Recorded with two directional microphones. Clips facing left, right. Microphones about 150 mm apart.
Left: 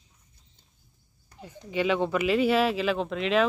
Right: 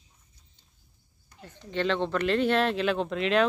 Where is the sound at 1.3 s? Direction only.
10° left (ahead or behind).